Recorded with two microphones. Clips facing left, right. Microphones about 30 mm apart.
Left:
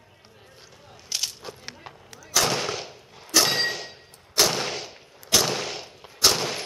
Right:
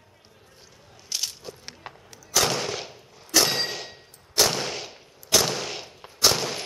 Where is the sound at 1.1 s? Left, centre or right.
Centre.